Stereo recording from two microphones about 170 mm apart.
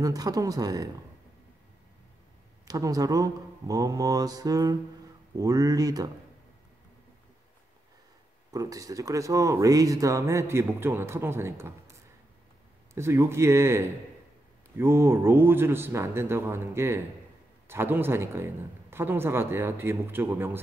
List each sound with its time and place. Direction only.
0.0 s speech: 20° right (ahead or behind)
2.7 s speech: 20° right (ahead or behind)
8.5 s speech: 20° right (ahead or behind)
12.9 s speech: 15° right (ahead or behind)